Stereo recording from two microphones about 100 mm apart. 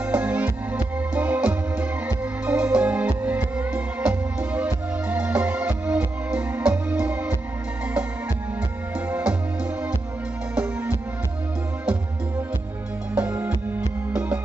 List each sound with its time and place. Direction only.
0.0 s music: 15° right (ahead or behind)
9.1 s music: 15° right (ahead or behind)
13.2 s music: 20° right (ahead or behind)